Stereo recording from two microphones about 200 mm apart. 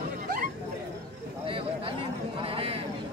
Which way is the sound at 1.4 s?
25° right (ahead or behind).